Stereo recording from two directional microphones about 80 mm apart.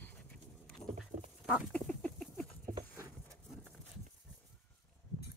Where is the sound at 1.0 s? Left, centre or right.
Centre.